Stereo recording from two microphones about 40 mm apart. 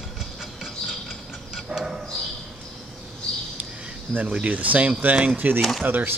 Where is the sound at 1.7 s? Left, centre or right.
Centre.